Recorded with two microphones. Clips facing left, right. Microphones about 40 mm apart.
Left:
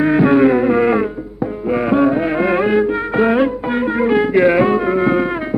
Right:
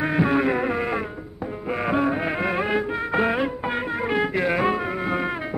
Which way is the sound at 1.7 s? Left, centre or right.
Centre.